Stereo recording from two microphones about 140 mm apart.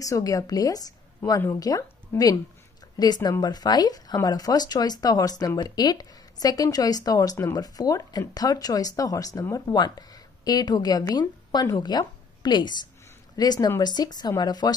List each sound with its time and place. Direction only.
0.0 s a woman's voice: 25° left (ahead or behind)